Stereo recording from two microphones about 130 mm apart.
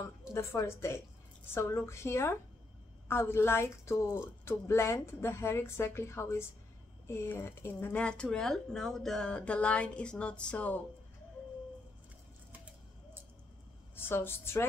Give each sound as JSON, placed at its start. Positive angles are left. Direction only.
{"t": 0.3, "sound": "speech", "side_deg": 20}
{"t": 13.9, "sound": "speech", "side_deg": 15}